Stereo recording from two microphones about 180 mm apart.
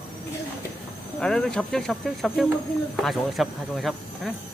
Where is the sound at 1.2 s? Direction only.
5° left (ahead or behind).